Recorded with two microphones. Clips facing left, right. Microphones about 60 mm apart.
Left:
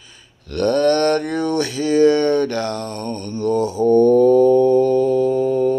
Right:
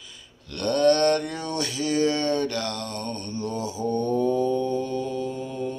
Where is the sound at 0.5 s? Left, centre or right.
Left.